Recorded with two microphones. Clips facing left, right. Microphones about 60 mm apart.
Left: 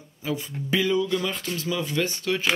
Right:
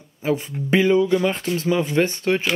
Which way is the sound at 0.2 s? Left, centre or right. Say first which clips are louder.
Right 7 dB; right.